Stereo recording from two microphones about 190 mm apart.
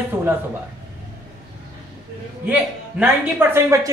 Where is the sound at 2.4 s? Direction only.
10° right (ahead or behind).